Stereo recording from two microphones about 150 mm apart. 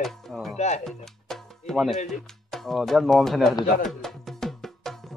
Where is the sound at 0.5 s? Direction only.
50° left (ahead or behind).